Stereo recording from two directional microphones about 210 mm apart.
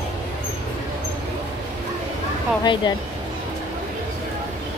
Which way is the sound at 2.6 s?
20° left (ahead or behind).